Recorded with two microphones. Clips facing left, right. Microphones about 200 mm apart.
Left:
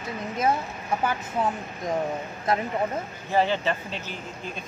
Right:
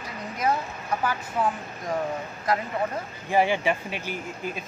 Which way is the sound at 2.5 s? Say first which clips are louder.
Left 1 dB; 25° left (ahead or behind).